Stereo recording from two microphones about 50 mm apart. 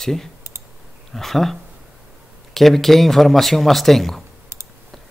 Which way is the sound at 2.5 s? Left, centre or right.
Centre.